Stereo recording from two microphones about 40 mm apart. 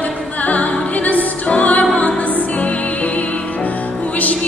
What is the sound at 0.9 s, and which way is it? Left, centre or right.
Music, left.